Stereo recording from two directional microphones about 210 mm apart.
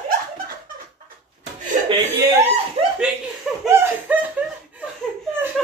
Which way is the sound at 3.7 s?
10° right (ahead or behind).